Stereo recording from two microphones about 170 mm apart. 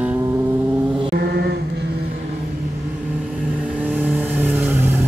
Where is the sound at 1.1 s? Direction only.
70° right (ahead or behind).